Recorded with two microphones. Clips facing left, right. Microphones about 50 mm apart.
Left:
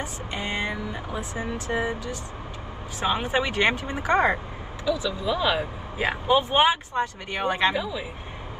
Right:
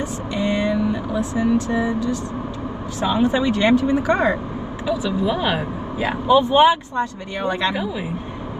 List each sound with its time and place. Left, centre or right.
0.3 s vehicle: left
3.0 s speech: left
5.0 s speech: right
5.9 s speech: left